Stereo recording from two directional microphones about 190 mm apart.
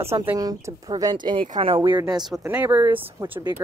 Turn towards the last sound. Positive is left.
turn(degrees=-25)  # may be behind; listen again after turning